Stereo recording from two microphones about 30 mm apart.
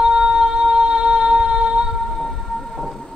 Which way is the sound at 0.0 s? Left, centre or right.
Right.